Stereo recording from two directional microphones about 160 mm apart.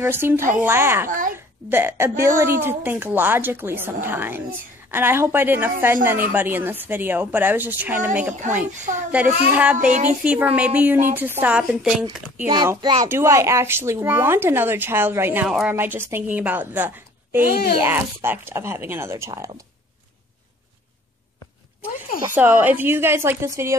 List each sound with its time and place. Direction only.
0.0 s speech: 15° right (ahead or behind)
1.0 s a child's voice: 55° right (ahead or behind)
1.3 s a child's voice: 15° right (ahead or behind)
9.8 s speech: 50° right (ahead or behind)
10.2 s speech: 10° right (ahead or behind)
12.4 s a child's voice: 25° right (ahead or behind)
22.3 s speech: 10° right (ahead or behind)